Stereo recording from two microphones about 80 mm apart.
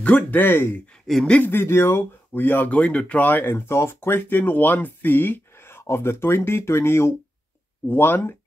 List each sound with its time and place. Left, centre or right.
0.0 s speech: centre